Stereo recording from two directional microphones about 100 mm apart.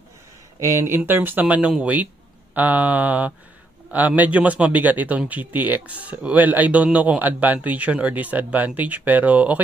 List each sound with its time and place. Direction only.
0.6 s a man's voice: 25° right (ahead or behind)